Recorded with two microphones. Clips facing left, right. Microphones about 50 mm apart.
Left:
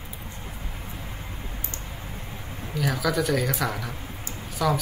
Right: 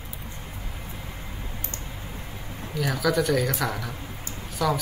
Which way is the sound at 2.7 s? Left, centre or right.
Centre.